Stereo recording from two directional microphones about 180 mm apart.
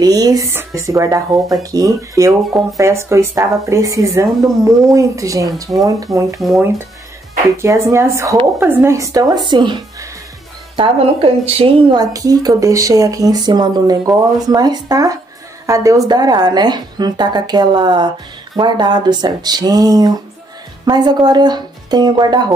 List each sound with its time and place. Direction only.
0.0 s a woman's voice: 20° right (ahead or behind)
7.5 s a woman's voice: 15° right (ahead or behind)
10.8 s a woman's voice: 30° right (ahead or behind)